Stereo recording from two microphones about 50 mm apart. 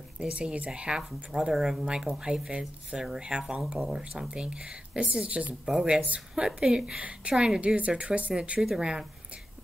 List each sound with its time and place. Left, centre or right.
0.2 s speech: right
5.7 s speech: centre
7.0 s speech: right
8.5 s speech: centre